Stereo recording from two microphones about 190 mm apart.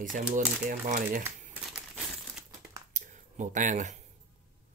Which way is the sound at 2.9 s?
40° right (ahead or behind).